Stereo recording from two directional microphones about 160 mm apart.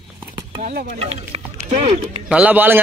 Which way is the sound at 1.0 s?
40° right (ahead or behind).